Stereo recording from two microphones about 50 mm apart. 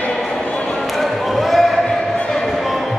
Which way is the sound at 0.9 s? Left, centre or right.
Centre.